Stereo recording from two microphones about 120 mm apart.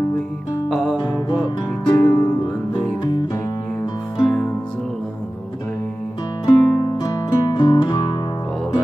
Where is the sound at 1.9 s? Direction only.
30° left (ahead or behind).